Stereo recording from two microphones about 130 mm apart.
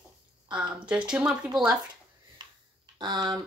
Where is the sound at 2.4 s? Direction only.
35° right (ahead or behind).